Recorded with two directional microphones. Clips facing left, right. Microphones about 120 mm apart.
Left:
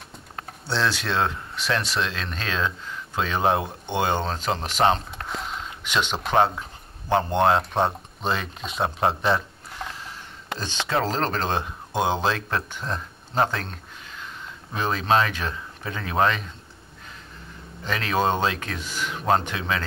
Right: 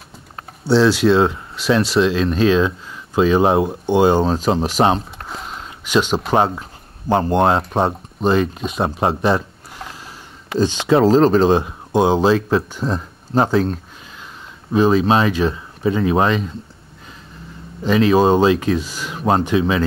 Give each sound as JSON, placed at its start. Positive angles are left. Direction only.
{"t": 0.7, "sound": "speech", "side_deg": -10}
{"t": 5.3, "sound": "a sound", "side_deg": -5}
{"t": 6.1, "sound": "speech", "side_deg": -10}
{"t": 17.8, "sound": "speech", "side_deg": -15}